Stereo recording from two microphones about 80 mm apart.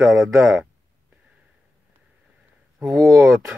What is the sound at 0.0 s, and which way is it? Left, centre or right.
Speech, right.